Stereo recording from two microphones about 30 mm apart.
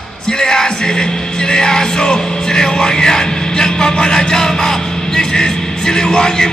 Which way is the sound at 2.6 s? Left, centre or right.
Left.